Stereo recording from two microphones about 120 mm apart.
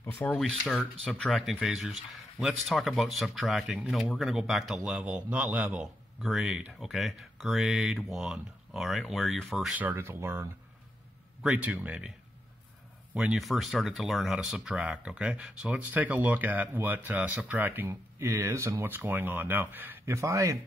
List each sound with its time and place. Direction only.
0.0 s speech: 20° left (ahead or behind)
1.1 s speech: 10° left (ahead or behind)
1.4 s speech: 5° right (ahead or behind)
9.8 s speech: 15° right (ahead or behind)
13.1 s speech: 5° right (ahead or behind); by 20.5 s 25° right (ahead or behind)